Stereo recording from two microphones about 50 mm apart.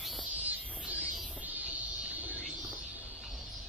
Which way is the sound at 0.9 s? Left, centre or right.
Right.